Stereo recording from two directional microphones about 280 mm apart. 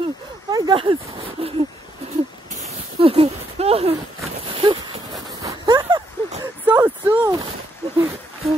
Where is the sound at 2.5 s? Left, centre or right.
Right; by 7.4 s centre.